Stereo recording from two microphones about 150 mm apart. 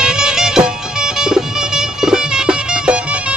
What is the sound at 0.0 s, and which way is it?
Music, 5° right (ahead or behind).